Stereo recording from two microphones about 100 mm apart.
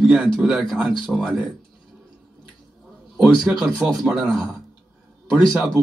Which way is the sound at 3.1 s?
Centre (ahead or behind).